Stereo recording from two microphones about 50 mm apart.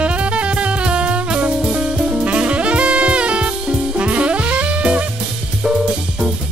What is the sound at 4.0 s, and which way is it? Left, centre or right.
Saxophone, right.